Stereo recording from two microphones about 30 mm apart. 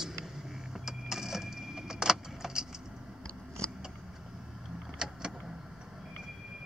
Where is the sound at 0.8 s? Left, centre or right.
Centre.